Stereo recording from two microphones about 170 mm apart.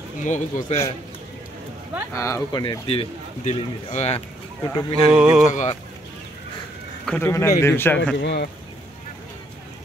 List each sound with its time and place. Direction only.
0.2 s speech: 45° left (ahead or behind)
2.1 s a man's voice: 15° left (ahead or behind)
2.6 s a man's voice: 30° left (ahead or behind)
4.6 s speech: 20° left (ahead or behind)
5.1 s speech: 5° right (ahead or behind)
5.5 s speech: 45° left (ahead or behind)
7.1 s a man's voice: 15° left (ahead or behind)
8.2 s speech: 80° left